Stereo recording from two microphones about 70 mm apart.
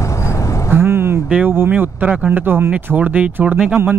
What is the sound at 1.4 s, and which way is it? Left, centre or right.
Speech, right.